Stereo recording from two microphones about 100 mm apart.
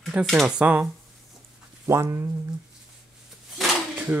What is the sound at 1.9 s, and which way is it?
Speech, 25° right (ahead or behind).